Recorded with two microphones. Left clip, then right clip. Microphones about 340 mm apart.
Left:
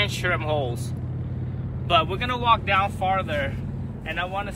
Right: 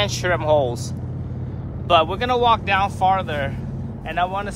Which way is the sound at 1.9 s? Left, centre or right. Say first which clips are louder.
Right 5 dB; centre.